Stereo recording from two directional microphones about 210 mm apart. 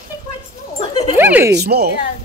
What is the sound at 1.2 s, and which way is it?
Speech, 10° right (ahead or behind).